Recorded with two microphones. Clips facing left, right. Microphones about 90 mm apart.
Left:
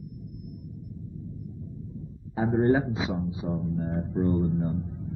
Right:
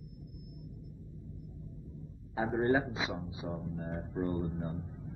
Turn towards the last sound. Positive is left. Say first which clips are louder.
# left 9 dB
turn(degrees=10)  # may be behind; listen again after turning